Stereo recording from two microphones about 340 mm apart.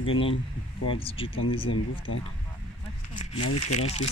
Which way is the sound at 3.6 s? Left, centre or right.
Centre.